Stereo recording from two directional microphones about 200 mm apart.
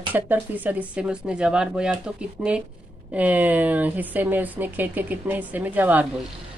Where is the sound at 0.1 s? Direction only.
10° right (ahead or behind).